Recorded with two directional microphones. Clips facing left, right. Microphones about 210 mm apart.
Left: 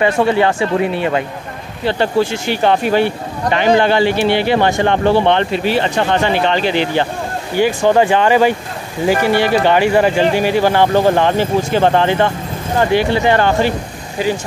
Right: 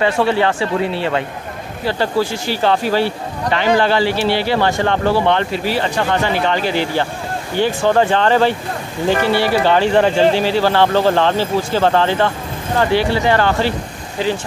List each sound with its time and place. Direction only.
0.0 s speech: 15° left (ahead or behind)
1.9 s speech: 20° left (ahead or behind)